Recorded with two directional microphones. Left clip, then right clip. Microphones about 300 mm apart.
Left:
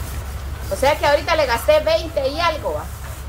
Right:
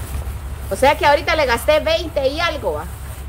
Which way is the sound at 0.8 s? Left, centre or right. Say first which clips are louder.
Right 3 dB; right.